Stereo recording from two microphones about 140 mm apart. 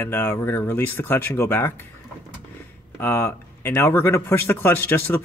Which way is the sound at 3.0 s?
15° left (ahead or behind).